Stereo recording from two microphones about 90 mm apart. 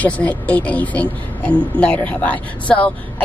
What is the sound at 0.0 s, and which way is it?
Speech, 15° left (ahead or behind).